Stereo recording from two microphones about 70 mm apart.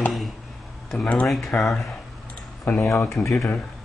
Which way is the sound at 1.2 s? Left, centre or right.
Centre.